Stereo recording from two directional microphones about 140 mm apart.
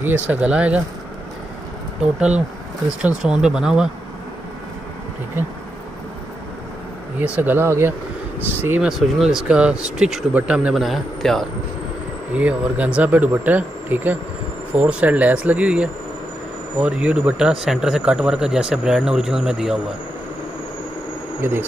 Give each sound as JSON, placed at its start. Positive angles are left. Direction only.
{"t": 0.3, "sound": "speech", "side_deg": -10}
{"t": 2.0, "sound": "speech", "side_deg": -5}
{"t": 7.2, "sound": "speech", "side_deg": -10}
{"t": 12.4, "sound": "speech", "side_deg": -10}
{"t": 21.4, "sound": "speech", "side_deg": -15}